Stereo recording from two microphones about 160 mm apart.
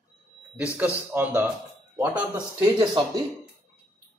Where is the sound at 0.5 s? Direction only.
10° right (ahead or behind).